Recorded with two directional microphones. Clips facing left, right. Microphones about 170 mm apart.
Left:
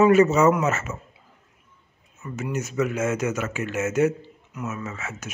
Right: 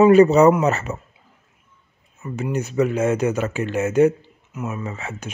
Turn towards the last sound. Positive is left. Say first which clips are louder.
# right 3 dB
turn(degrees=-35)  # may be behind; listen again after turning